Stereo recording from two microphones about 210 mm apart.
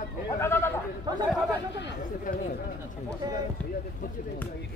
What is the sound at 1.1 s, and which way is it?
Speech, 20° right (ahead or behind).